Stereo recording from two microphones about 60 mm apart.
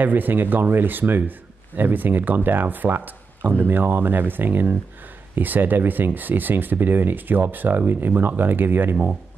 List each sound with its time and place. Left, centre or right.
0.0 s speech: right